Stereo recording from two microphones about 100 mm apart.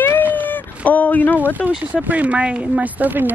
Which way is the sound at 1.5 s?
15° right (ahead or behind).